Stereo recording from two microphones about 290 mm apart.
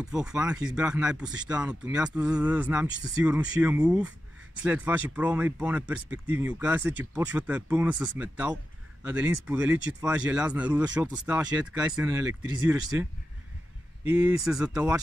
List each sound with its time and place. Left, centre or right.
0.0 s speech: centre
14.1 s speech: centre